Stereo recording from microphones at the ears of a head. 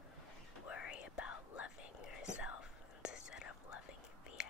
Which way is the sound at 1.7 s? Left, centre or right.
Left.